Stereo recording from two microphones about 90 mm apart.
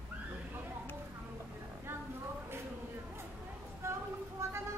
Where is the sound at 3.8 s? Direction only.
30° right (ahead or behind).